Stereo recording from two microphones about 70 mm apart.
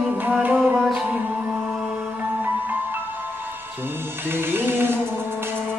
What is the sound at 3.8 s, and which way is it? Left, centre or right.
Music, right.